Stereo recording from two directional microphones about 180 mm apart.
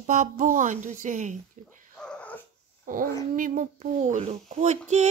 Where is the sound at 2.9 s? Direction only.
50° right (ahead or behind).